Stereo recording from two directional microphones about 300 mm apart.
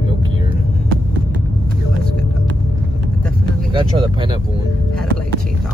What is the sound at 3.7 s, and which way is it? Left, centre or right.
Speech, centre.